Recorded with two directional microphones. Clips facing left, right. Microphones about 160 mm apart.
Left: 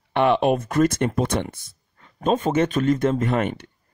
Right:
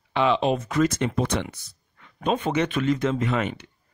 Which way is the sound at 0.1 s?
55° left (ahead or behind).